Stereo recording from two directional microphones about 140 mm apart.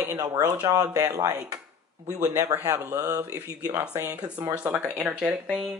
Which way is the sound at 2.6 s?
25° right (ahead or behind).